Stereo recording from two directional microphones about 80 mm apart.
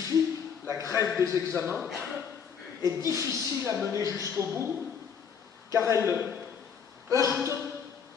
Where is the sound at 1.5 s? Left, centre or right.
Right.